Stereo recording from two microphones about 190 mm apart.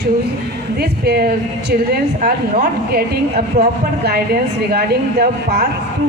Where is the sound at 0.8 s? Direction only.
55° right (ahead or behind).